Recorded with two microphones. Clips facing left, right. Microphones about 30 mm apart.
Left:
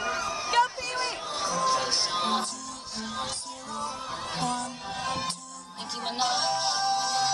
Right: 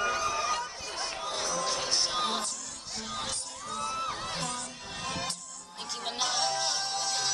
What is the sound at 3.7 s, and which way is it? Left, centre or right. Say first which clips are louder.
Music: even; left.